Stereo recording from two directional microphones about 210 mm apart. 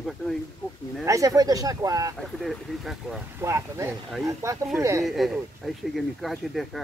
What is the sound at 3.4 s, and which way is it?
Speech, 15° right (ahead or behind).